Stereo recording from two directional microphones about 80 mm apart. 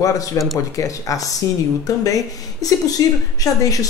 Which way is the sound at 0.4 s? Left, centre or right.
Left.